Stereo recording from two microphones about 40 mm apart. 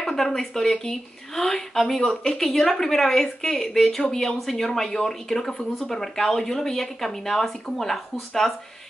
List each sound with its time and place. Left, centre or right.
0.2 s speech: centre